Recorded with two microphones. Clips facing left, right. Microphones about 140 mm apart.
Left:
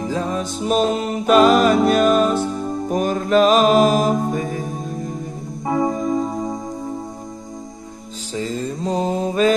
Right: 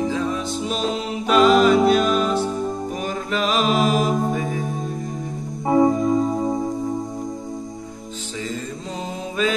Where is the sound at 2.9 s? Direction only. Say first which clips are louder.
Left 7 dB; 45° left (ahead or behind).